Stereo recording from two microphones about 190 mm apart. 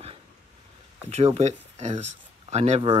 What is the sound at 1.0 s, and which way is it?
Speech, 35° right (ahead or behind).